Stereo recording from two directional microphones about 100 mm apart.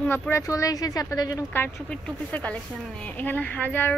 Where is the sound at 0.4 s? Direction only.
35° left (ahead or behind).